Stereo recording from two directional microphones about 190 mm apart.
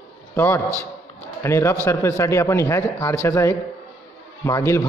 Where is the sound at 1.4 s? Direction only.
15° left (ahead or behind).